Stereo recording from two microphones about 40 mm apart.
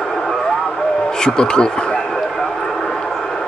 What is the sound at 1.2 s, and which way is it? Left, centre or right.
Speech, centre.